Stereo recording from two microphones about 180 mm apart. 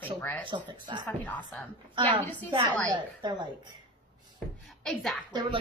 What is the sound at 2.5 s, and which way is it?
Speech, 25° right (ahead or behind).